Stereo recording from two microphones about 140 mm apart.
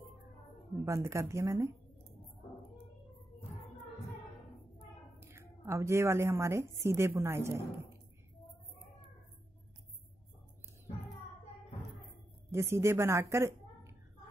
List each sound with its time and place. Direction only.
0.8 s a woman's voice: 20° right (ahead or behind)
5.2 s a woman's voice: 20° right (ahead or behind)
12.4 s a woman's voice: 20° right (ahead or behind)